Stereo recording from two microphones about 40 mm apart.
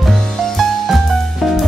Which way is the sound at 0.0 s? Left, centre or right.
Centre.